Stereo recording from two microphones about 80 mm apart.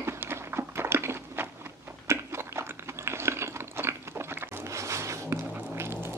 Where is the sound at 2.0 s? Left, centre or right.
Right.